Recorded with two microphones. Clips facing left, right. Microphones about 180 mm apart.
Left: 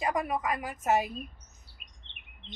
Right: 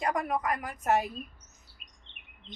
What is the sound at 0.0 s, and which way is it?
A woman's voice, centre (ahead or behind).